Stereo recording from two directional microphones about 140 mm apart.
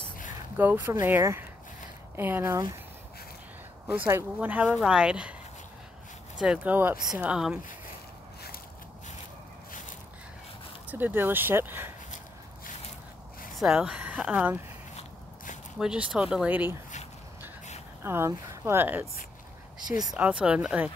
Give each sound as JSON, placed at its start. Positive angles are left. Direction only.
{"t": 0.6, "sound": "a woman's voice", "side_deg": -15}
{"t": 4.1, "sound": "a woman's voice", "side_deg": -15}
{"t": 6.3, "sound": "a woman's voice", "side_deg": -5}
{"t": 10.9, "sound": "a woman's voice", "side_deg": -15}
{"t": 13.6, "sound": "a woman's voice", "side_deg": -5}
{"t": 15.8, "sound": "a woman's voice", "side_deg": -5}
{"t": 18.0, "sound": "a woman's voice", "side_deg": -20}
{"t": 20.2, "sound": "a woman's voice", "side_deg": -10}